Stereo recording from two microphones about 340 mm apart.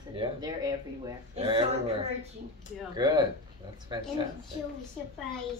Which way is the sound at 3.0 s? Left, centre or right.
Centre.